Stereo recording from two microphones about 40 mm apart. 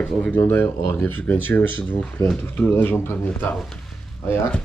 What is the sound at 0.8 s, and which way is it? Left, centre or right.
Speech, left.